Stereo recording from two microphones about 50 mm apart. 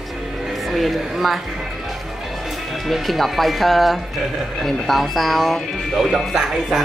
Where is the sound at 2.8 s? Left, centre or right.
Centre.